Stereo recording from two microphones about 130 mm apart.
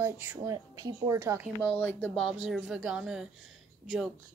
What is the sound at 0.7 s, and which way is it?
Speech, 30° right (ahead or behind).